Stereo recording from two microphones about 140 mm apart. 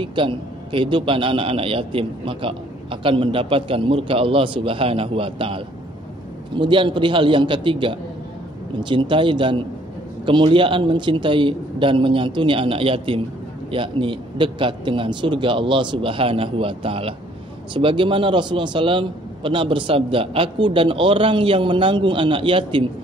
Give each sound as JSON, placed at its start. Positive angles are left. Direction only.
{"t": 0.0, "sound": "a man's voice", "side_deg": -35}